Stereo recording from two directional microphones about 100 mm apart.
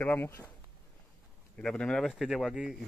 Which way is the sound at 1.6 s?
10° left (ahead or behind).